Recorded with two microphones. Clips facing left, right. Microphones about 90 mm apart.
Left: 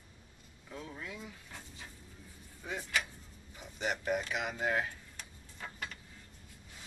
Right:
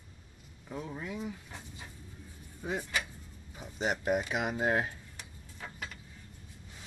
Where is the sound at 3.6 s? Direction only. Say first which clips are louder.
Right 3 dB; 25° right (ahead or behind).